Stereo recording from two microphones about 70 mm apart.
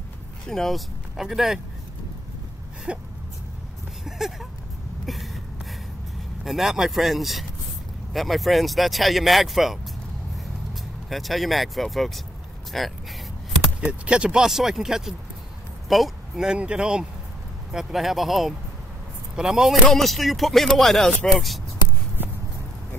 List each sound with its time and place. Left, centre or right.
0.5 s speech: centre
2.9 s speech: centre
4.0 s a sound: centre
6.4 s speech: centre
11.1 s speech: centre
14.0 s speech: centre
17.7 s speech: centre
22.2 s a sound: right